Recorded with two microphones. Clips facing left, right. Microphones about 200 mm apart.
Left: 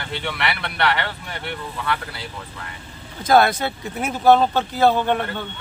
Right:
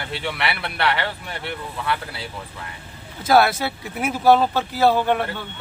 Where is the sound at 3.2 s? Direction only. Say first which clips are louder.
Left 1 dB; 5° right (ahead or behind).